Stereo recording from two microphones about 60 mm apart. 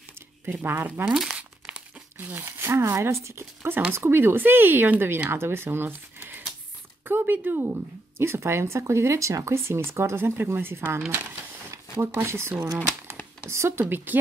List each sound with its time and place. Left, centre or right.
0.5 s speech: right
1.1 s speech: centre
1.7 s crumpling: right
2.1 s speech: right
2.8 s speech: right
8.2 s speech: right